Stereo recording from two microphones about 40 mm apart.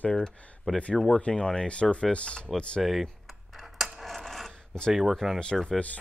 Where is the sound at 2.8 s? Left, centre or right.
Centre.